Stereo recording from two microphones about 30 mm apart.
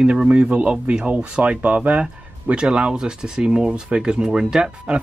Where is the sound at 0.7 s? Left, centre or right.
Right.